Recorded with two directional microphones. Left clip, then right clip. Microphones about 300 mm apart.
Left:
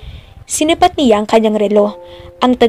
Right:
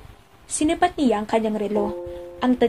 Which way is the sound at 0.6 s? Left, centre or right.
Left.